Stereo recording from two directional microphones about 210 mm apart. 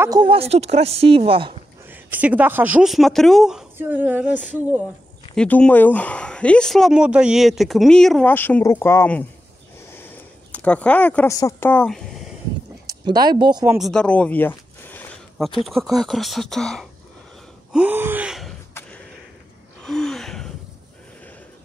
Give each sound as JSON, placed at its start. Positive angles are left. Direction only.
{"t": 0.0, "sound": "a woman's voice", "side_deg": -20}
{"t": 1.9, "sound": "speech", "side_deg": -10}
{"t": 5.3, "sound": "speech", "side_deg": 5}
{"t": 10.5, "sound": "speech", "side_deg": 5}
{"t": 12.8, "sound": "speech", "side_deg": -20}
{"t": 13.7, "sound": "a sound", "side_deg": 0}
{"t": 15.6, "sound": "speech", "side_deg": 0}
{"t": 17.7, "sound": "speech", "side_deg": -10}
{"t": 18.8, "sound": "a sound", "side_deg": 5}
{"t": 19.8, "sound": "gasp", "side_deg": 0}